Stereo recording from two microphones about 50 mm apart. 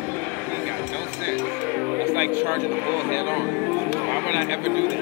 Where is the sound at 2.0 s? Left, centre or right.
Right.